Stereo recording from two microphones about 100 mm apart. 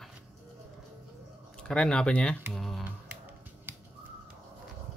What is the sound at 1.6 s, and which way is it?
Speech, 10° left (ahead or behind).